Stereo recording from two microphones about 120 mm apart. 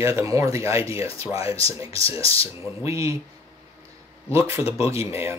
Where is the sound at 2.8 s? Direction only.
25° right (ahead or behind).